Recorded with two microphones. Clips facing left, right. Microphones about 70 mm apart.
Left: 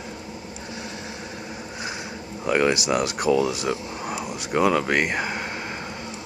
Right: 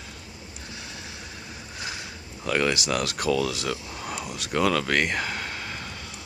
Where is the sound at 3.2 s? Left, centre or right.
Left.